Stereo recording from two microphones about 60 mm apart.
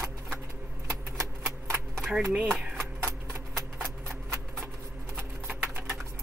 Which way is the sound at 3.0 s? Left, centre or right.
Right.